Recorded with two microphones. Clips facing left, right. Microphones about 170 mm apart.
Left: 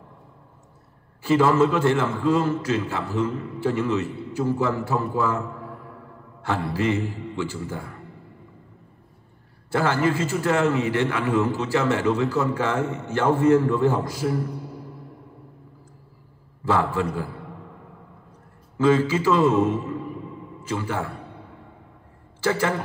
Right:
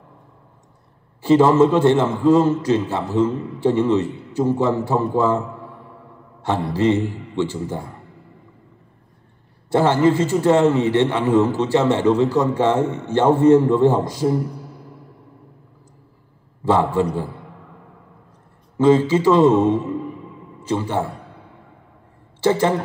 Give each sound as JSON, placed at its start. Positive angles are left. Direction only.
{"t": 1.2, "sound": "a man's voice", "side_deg": -25}
{"t": 6.4, "sound": "a man's voice", "side_deg": -25}
{"t": 9.7, "sound": "a man's voice", "side_deg": -25}
{"t": 16.6, "sound": "a man's voice", "side_deg": -25}
{"t": 18.8, "sound": "a man's voice", "side_deg": -25}
{"t": 22.4, "sound": "a man's voice", "side_deg": -25}